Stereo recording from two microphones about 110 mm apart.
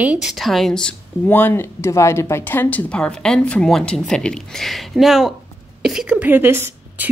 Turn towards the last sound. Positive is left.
turn(degrees=-20)  # may be behind; listen again after turning